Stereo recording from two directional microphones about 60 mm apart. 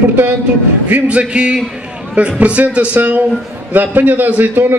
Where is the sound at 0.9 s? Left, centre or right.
Centre.